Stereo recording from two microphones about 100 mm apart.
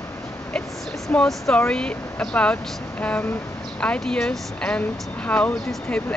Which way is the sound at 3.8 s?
10° left (ahead or behind).